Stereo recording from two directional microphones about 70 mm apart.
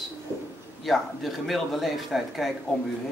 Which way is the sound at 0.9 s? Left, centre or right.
Centre.